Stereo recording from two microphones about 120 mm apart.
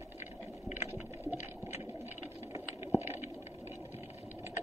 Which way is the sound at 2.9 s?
20° right (ahead or behind).